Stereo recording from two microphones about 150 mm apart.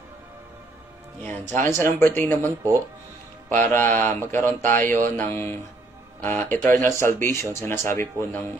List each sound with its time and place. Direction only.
1.2 s speech: 10° left (ahead or behind)